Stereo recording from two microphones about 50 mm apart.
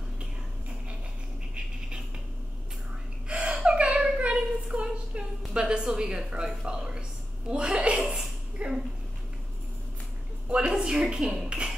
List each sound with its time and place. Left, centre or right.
0.2 s whispering: right
3.3 s a sound: right
8.6 s finger snapping: right
10.7 s dishes: centre